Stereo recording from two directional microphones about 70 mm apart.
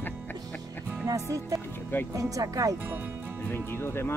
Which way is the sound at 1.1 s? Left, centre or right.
Right.